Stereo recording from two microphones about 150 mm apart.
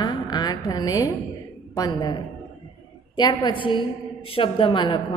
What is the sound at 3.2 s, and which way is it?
A woman's voice, 30° left (ahead or behind).